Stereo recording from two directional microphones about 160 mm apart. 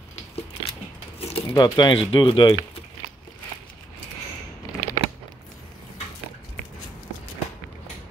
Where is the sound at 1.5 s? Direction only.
25° left (ahead or behind).